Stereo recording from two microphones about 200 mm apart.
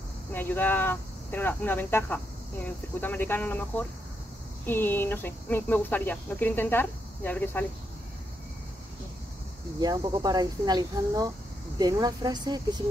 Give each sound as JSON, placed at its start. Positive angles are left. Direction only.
{"t": 0.3, "sound": "speech", "side_deg": 10}
{"t": 9.8, "sound": "speech", "side_deg": -20}